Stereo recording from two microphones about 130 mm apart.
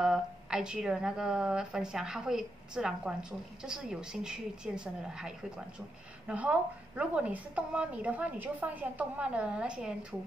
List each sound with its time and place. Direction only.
0.0 s a woman's voice: 5° right (ahead or behind)